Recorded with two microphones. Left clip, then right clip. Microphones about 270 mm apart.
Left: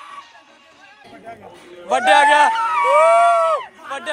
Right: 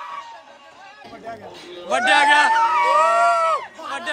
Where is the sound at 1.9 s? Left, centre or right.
Centre.